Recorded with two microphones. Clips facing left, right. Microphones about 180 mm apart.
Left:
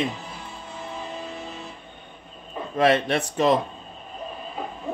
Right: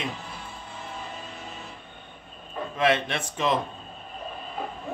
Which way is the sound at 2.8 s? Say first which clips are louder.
Left 5 dB; 40° left (ahead or behind).